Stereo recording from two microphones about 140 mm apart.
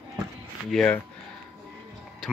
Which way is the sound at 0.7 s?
5° left (ahead or behind).